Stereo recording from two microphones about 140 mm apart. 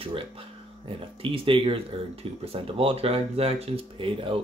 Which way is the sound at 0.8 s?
40° right (ahead or behind).